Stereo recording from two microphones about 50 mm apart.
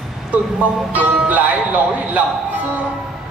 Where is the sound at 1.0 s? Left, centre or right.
Right.